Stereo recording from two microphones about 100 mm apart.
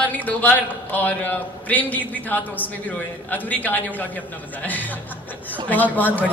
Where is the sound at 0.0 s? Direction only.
15° left (ahead or behind).